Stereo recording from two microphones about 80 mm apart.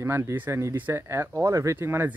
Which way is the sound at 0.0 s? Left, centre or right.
Right.